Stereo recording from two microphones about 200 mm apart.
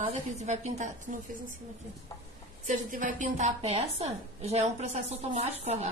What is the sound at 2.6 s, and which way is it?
A woman's voice, 40° right (ahead or behind).